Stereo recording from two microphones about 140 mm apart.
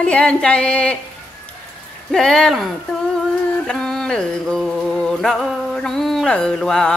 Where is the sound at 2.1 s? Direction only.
5° left (ahead or behind).